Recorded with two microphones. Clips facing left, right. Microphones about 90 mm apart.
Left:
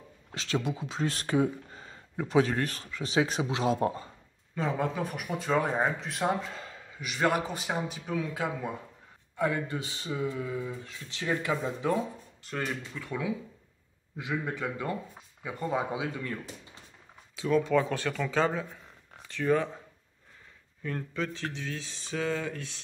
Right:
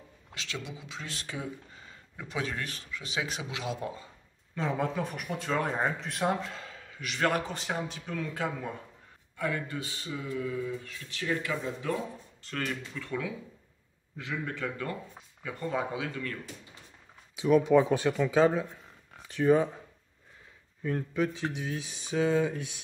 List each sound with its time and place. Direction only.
0.3 s a sound: 35° left (ahead or behind)
0.6 s speech: 45° left (ahead or behind)
4.6 s speech: centre (ahead or behind)
9.4 s speech: 20° left (ahead or behind)
12.4 s speech: 15° left (ahead or behind)
17.4 s speech: 15° right (ahead or behind)
20.8 s speech: 10° right (ahead or behind)